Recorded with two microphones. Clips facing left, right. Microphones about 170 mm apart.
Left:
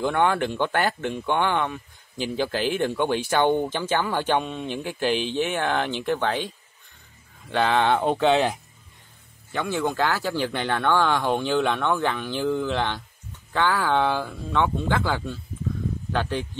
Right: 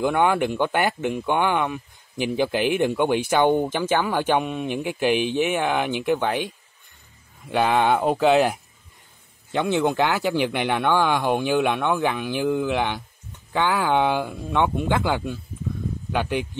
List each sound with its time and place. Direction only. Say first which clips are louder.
0.0 s speech: right 2 dB; 15° right (ahead or behind)
9.5 s speech: right 4 dB; 20° right (ahead or behind)